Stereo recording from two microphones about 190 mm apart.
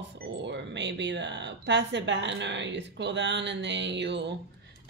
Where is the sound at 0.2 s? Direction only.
65° right (ahead or behind).